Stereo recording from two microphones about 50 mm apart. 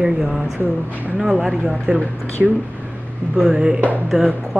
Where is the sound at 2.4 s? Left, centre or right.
Right.